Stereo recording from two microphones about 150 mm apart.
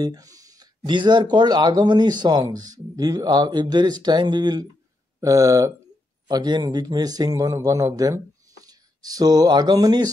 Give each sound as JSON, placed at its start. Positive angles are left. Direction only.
{"t": 0.0, "sound": "speech", "side_deg": -25}